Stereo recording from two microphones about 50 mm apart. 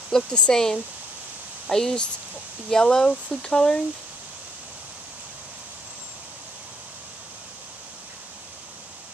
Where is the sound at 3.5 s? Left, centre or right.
Centre.